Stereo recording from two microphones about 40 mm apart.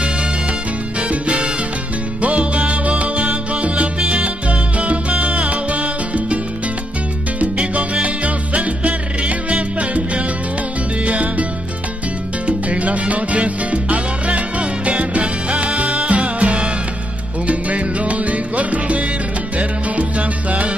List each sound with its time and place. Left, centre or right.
1.2 s salsa music: right
2.2 s music: right
7.3 s salsa music: right
11.1 s music: right
12.4 s salsa music: right
17.5 s music: right